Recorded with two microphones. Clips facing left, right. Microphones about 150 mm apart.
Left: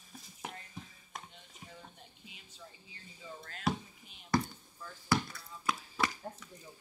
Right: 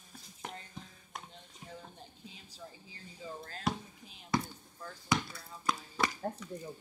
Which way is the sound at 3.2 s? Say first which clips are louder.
Right 4 dB; 35° right (ahead or behind).